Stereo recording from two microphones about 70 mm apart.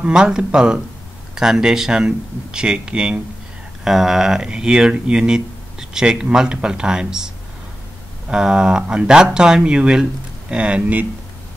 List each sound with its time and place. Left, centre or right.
0.0 s speech: centre